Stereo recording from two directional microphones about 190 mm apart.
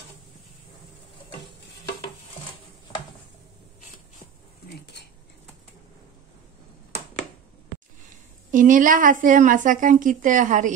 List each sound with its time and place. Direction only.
8.5 s a woman's voice: 45° right (ahead or behind)